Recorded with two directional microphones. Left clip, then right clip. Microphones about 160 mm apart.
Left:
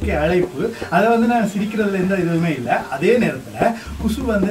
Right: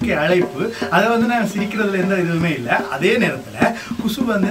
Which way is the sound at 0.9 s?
Centre (ahead or behind).